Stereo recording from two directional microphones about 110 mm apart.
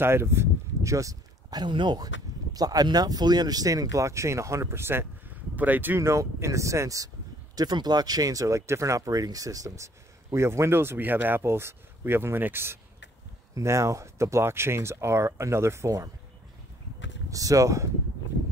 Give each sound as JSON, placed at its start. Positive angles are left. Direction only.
{"t": 0.0, "sound": "speech", "side_deg": -20}
{"t": 17.3, "sound": "speech", "side_deg": -30}